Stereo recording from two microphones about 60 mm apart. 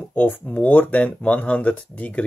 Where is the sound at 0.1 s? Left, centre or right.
Left.